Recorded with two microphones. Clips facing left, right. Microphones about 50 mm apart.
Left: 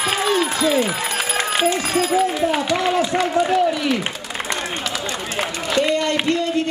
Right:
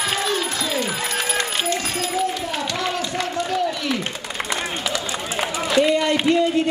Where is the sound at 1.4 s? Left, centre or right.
Centre.